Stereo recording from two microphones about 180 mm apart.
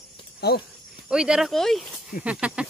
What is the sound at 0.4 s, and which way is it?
Speech, 60° left (ahead or behind).